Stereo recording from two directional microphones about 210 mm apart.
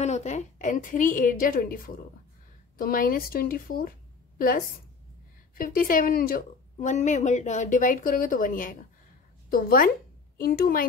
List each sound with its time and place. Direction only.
0.0 s a woman's voice: 35° left (ahead or behind)